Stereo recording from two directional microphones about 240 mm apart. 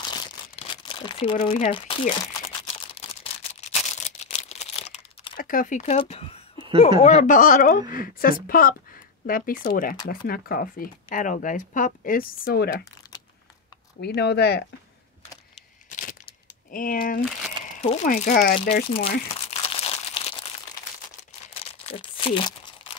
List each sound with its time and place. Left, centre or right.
0.6 s crumpling: centre
5.4 s speech: left
14.0 s speech: left
16.7 s speech: left
18.9 s speech: left
19.5 s crumpling: left
21.6 s tearing: left